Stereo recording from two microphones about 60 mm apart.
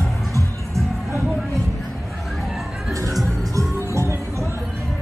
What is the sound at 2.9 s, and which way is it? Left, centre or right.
Music, right.